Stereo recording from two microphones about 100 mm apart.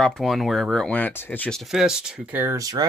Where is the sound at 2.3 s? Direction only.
20° right (ahead or behind).